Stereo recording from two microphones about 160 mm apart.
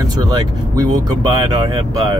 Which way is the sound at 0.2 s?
25° right (ahead or behind).